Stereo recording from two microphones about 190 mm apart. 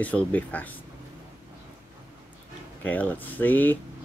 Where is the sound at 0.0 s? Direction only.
10° left (ahead or behind).